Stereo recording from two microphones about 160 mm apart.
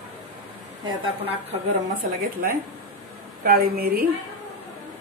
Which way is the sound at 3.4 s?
70° right (ahead or behind).